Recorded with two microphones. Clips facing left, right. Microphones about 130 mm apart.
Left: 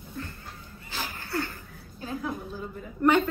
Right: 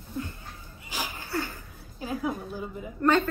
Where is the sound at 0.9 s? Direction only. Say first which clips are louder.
Right 1 dB; 15° right (ahead or behind).